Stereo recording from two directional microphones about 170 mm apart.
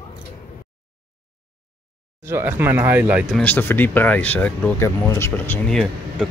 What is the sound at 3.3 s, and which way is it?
Speech, 10° left (ahead or behind).